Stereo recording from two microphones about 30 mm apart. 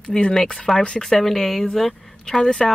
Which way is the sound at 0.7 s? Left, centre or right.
Left.